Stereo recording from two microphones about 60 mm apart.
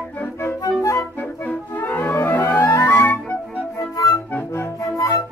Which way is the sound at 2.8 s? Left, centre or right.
Left.